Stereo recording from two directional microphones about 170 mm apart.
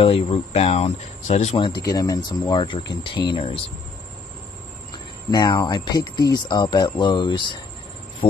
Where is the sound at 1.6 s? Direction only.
25° left (ahead or behind).